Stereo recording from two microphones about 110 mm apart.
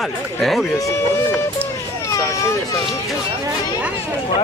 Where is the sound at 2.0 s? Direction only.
30° left (ahead or behind).